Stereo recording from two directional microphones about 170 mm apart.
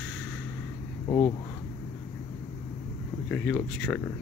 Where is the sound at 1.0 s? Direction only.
25° left (ahead or behind).